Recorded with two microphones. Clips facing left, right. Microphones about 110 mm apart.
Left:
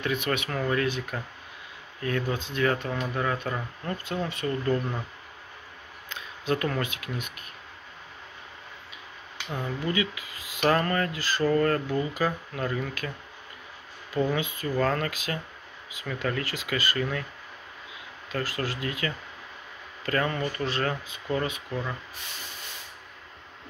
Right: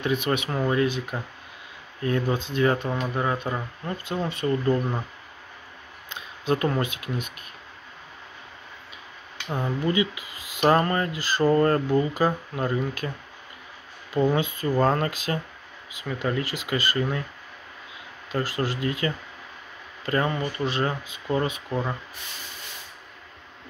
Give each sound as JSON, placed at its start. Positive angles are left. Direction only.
{"t": 0.0, "sound": "speech", "side_deg": -20}
{"t": 6.0, "sound": "speech", "side_deg": -25}
{"t": 9.8, "sound": "speech", "side_deg": -25}
{"t": 14.3, "sound": "speech", "side_deg": -30}
{"t": 15.9, "sound": "speech", "side_deg": -20}
{"t": 18.3, "sound": "speech", "side_deg": -25}